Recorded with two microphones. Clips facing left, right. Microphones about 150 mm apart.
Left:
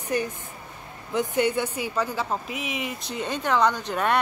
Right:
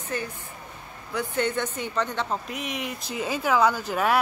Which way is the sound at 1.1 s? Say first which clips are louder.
Left 3 dB; 15° left (ahead or behind).